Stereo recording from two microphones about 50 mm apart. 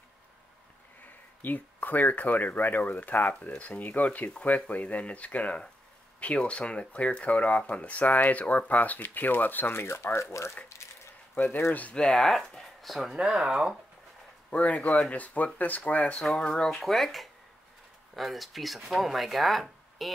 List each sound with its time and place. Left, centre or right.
1.4 s speech: left
10.3 s speech: left
11.3 s speech: left
11.9 s speech: centre
13.2 s speech: centre
14.5 s speech: left
16.2 s speech: centre
16.8 s speech: centre